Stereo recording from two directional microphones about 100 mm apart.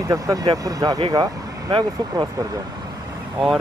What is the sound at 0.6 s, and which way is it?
Speech, 40° right (ahead or behind).